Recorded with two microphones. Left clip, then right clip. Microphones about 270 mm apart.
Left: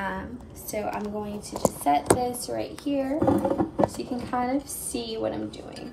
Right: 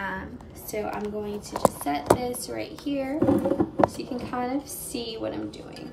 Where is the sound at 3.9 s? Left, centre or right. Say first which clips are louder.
Left 2 dB; right.